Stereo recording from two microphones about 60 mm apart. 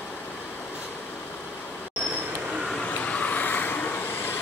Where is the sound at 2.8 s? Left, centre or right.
Left.